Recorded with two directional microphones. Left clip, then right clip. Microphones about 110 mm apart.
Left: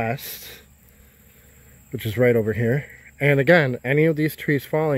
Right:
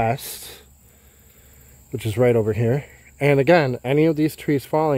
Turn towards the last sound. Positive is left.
turn(degrees=-5)  # may be behind; listen again after turning